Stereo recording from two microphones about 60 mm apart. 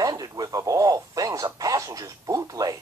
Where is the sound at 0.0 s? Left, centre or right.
Right.